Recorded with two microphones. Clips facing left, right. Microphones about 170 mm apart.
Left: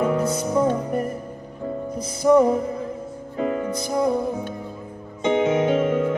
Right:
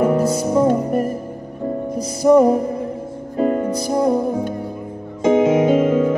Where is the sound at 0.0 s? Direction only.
35° right (ahead or behind).